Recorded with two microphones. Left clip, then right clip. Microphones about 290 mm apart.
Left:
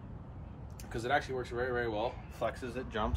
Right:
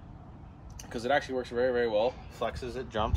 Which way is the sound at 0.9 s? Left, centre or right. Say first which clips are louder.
Right 4 dB; right.